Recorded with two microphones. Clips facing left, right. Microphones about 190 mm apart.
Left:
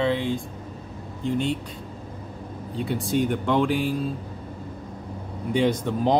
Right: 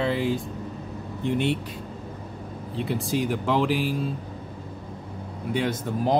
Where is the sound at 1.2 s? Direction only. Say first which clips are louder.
Even; 65° right (ahead or behind).